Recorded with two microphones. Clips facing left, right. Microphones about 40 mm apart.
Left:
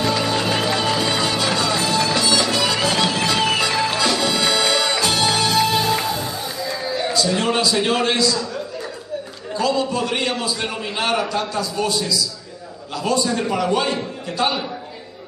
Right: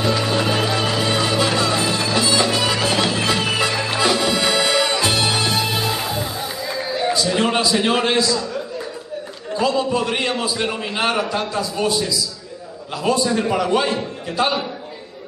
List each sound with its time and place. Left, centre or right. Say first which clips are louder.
0.0 s music: right 1 dB; centre
9.6 s a man's voice: right 1 dB; centre